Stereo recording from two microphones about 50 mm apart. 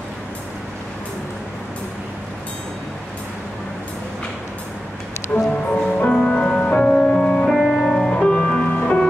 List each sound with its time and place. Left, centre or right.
5.3 s music: left
7.5 s music: centre
8.1 s music: centre